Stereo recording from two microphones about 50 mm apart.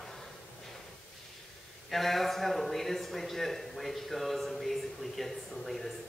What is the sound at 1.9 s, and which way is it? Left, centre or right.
A man's voice, centre.